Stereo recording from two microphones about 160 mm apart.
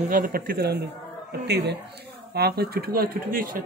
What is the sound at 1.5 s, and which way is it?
Speech, 90° right.